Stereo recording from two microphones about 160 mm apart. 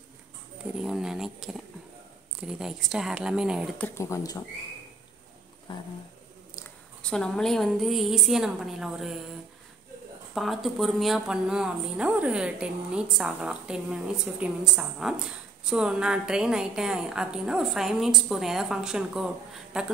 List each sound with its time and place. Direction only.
0.8 s speech: 5° right (ahead or behind)
3.7 s speech: 15° left (ahead or behind)
7.0 s speech: 5° left (ahead or behind)
10.3 s speech: centre (ahead or behind)